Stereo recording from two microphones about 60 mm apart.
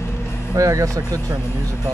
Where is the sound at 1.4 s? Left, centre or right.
Left.